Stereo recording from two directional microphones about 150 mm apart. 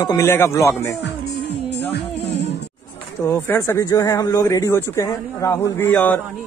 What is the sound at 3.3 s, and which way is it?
Speech, 15° left (ahead or behind).